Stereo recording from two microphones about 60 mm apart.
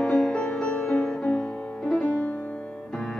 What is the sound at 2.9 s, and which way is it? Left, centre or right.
Music, centre.